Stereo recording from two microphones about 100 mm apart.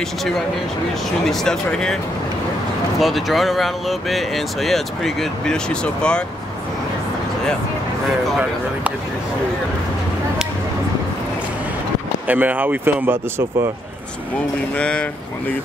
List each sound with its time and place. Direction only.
1.2 s speech: 5° left (ahead or behind)
3.0 s speech: centre (ahead or behind)
12.3 s speech: 15° right (ahead or behind)
14.8 s speech: 10° left (ahead or behind)